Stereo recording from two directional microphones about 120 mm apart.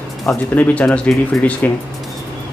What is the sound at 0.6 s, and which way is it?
Speech, 10° left (ahead or behind).